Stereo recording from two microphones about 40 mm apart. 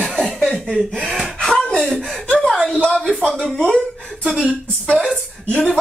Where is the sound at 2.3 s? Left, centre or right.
Centre.